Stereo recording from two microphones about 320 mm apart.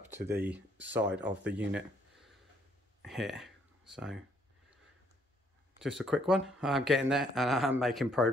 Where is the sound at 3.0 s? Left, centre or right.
Centre.